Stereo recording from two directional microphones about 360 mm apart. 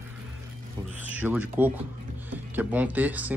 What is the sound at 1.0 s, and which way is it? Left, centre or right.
Speech, centre.